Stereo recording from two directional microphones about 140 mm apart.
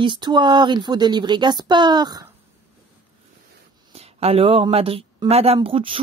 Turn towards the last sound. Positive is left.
turn(degrees=-40)  # may be behind; listen again after turning